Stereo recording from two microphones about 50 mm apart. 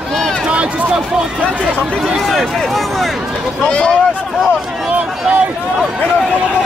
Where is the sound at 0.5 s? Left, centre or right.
Right.